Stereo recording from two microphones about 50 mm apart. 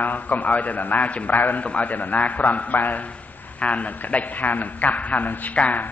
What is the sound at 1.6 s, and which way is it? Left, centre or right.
A man's voice, left.